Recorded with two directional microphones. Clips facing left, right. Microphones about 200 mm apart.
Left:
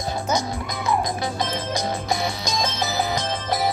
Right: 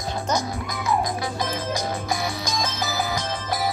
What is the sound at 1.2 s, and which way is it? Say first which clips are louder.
Music: left 1 dB; 25° left (ahead or behind).